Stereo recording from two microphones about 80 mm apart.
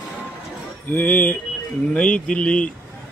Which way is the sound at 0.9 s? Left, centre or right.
Left.